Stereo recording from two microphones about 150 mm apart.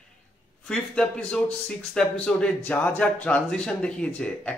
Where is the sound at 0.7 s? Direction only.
5° left (ahead or behind).